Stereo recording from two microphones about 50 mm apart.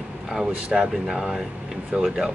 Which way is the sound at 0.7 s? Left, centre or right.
Centre.